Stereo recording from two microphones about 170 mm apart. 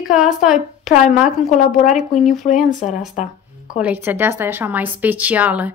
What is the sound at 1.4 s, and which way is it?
Speech, 50° left (ahead or behind).